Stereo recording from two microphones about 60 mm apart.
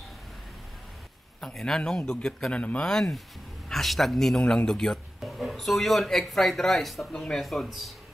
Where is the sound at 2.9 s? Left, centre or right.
Centre.